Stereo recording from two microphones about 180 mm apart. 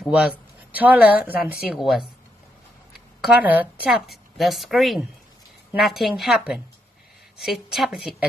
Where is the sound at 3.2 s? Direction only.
10° right (ahead or behind).